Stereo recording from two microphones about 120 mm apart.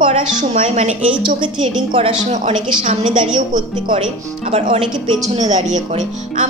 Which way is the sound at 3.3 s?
40° right (ahead or behind).